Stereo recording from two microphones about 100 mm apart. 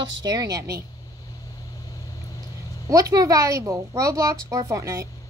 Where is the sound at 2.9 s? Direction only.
40° right (ahead or behind).